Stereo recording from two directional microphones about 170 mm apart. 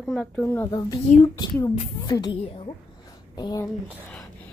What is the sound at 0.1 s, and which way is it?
Speech, 5° left (ahead or behind).